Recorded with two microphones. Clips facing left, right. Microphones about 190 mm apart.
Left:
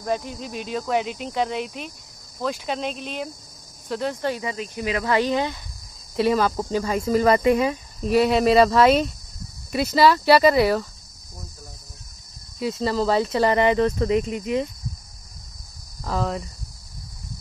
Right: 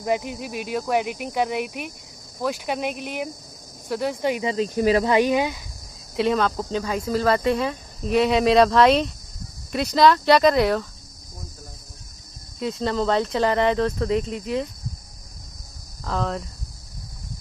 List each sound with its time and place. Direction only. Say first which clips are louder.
0.0 s speech: right 2 dB; 15° right (ahead or behind)
4.6 s speech: right 7 dB; 35° right (ahead or behind)
5.0 s speech: right 2 dB; 15° right (ahead or behind)
6.1 s speech: left 1 dB; 5° left (ahead or behind)
12.5 s speech: left 1 dB; 5° left (ahead or behind)
16.0 s speech: left 1 dB; 5° left (ahead or behind)